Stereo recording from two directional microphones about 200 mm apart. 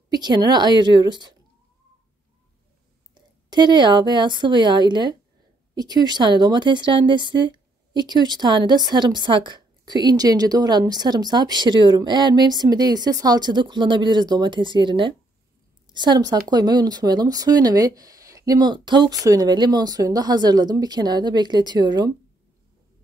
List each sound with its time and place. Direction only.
0.1 s a woman's voice: 20° right (ahead or behind)
3.2 s a woman's voice: 20° right (ahead or behind)